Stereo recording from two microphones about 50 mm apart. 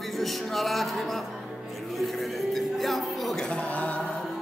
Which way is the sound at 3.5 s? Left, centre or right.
Left.